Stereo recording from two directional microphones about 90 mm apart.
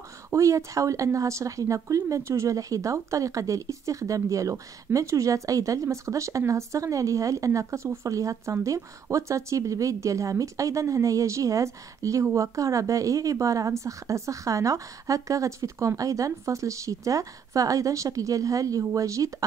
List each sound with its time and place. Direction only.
0.3 s speech: 35° right (ahead or behind)